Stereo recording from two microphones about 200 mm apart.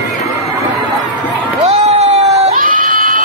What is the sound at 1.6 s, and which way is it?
Crowd, 30° right (ahead or behind).